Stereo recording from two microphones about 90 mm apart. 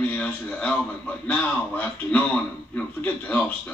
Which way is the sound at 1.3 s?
20° left (ahead or behind).